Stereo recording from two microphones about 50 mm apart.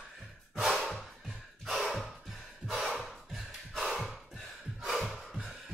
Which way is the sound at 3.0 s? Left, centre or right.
Centre.